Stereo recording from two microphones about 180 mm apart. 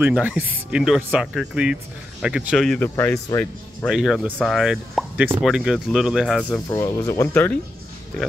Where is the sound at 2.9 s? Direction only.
15° left (ahead or behind).